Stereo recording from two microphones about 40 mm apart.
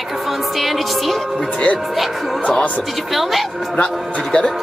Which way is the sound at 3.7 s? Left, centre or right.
Left.